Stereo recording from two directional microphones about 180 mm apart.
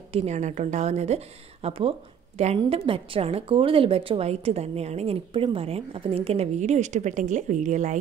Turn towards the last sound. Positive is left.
turn(degrees=-40)  # may be behind; listen again after turning